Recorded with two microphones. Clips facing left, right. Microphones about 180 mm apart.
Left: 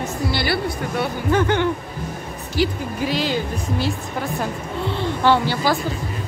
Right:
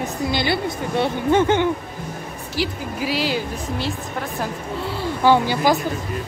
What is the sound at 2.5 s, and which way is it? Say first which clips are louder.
Speech: left 3 dB; 5° right (ahead or behind).